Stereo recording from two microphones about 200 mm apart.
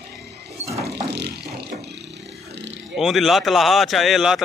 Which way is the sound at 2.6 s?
65° right (ahead or behind).